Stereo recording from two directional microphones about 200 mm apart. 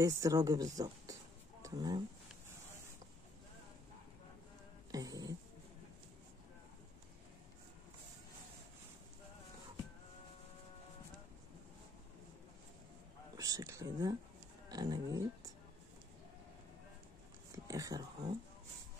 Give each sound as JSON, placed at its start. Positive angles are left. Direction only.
{"t": 0.0, "sound": "speech", "side_deg": -15}
{"t": 4.9, "sound": "music", "side_deg": -20}
{"t": 13.4, "sound": "speech", "side_deg": -15}
{"t": 17.5, "sound": "a sound", "side_deg": -15}